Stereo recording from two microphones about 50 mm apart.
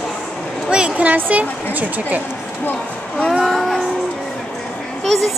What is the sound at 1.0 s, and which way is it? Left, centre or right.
A woman's voice, right.